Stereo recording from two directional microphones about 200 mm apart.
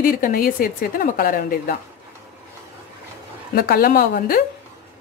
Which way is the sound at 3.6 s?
50° left (ahead or behind).